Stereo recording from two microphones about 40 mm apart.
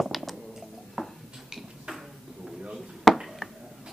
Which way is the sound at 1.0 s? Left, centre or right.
Centre.